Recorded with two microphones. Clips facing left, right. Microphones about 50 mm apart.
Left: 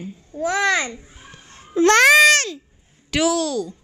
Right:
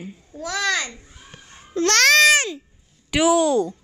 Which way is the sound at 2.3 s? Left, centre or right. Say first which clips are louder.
Even; centre.